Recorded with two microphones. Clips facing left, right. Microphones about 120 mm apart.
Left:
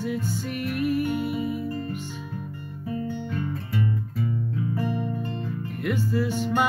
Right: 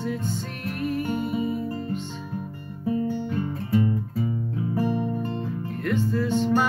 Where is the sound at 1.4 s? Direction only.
35° right (ahead or behind).